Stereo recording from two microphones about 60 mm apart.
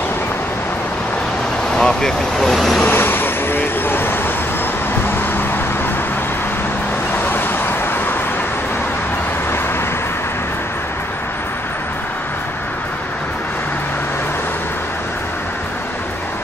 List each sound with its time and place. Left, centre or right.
1.7 s speech: centre
2.8 s vehicle: left
7.2 s vehicle: left